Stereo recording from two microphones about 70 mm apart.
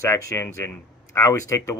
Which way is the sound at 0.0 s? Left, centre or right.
Left.